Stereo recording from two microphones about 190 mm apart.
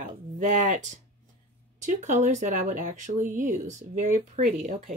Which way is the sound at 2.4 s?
40° right (ahead or behind).